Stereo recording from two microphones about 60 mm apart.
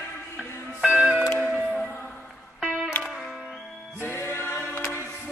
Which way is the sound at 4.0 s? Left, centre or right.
Left.